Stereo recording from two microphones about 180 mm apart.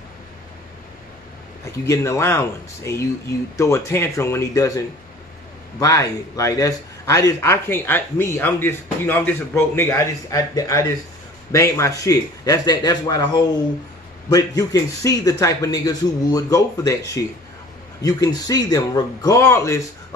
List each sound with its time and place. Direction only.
1.9 s a man's voice: 15° left (ahead or behind)